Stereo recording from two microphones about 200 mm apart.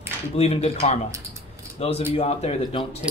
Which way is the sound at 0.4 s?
30° left (ahead or behind).